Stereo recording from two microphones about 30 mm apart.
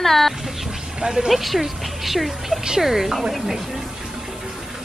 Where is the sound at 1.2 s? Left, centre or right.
Centre.